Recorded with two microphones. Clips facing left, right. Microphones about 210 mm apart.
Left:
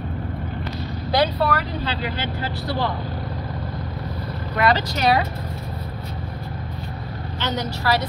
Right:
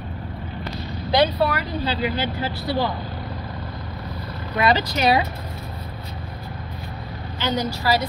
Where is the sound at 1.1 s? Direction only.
15° right (ahead or behind).